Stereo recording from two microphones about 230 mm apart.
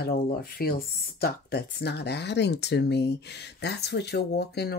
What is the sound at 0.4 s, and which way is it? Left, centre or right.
Speech, left.